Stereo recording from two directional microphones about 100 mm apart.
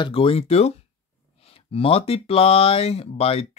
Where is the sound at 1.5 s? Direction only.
70° left (ahead or behind).